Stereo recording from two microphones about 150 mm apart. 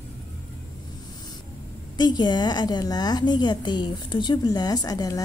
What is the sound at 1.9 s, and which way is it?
A woman's voice, 30° left (ahead or behind).